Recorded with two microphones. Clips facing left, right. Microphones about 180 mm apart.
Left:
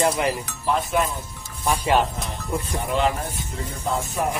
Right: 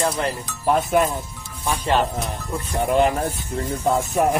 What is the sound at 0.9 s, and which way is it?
Speech, 50° right (ahead or behind).